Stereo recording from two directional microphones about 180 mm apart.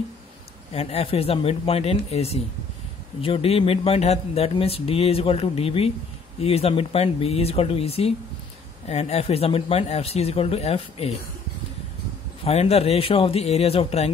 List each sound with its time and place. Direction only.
0.7 s speech: 35° left (ahead or behind)
12.4 s speech: 35° left (ahead or behind)